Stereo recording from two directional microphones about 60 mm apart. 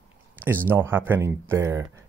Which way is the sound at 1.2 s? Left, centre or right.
Right.